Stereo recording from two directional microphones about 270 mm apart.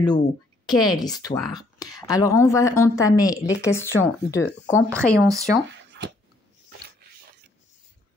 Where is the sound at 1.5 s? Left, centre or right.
Centre.